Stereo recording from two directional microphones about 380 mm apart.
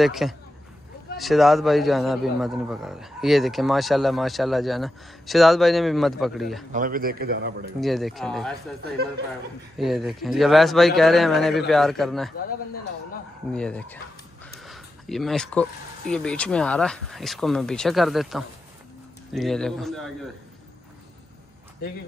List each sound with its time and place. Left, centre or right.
0.0 s a man's voice: centre
6.7 s speech: right
7.8 s a man's voice: centre
9.8 s a man's voice: centre
13.5 s a man's voice: centre
14.4 s a sound: centre
16.1 s a man's voice: centre